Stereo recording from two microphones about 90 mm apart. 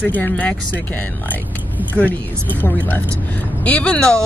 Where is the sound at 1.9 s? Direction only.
20° left (ahead or behind).